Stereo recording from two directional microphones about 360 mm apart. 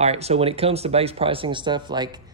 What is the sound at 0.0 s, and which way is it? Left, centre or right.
Speech, centre.